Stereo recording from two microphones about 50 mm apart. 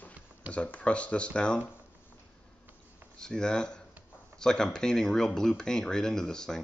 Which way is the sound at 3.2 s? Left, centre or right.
Centre.